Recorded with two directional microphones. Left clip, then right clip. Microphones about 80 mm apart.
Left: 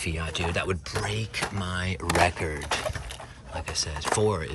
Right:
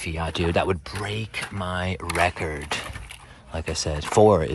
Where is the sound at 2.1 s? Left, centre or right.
Left.